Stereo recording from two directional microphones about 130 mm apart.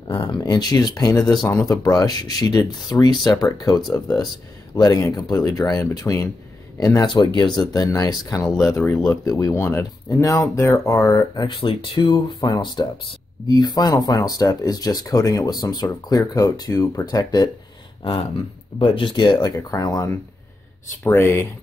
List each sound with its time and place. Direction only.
0.1 s speech: 35° left (ahead or behind)
11.4 s speech: 40° left (ahead or behind)
18.0 s speech: 45° left (ahead or behind)
19.3 s speech: 25° left (ahead or behind)